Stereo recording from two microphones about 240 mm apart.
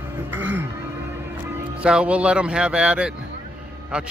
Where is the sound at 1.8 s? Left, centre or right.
Centre.